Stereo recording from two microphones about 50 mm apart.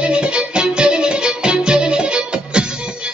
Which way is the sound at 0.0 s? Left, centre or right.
Right.